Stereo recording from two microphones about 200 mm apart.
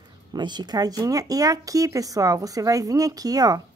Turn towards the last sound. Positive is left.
turn(degrees=-20)  # may be behind; listen again after turning